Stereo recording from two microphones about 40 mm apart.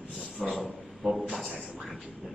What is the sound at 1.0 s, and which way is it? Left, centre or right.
Speech, centre.